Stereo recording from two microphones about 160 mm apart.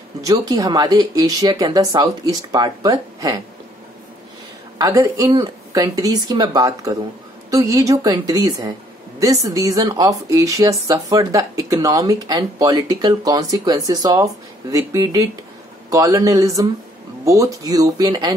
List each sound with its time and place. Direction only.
0.2 s speech: 20° right (ahead or behind)
4.7 s speech: 20° right (ahead or behind)